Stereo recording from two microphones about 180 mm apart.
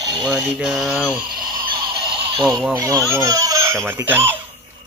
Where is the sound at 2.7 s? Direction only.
15° right (ahead or behind).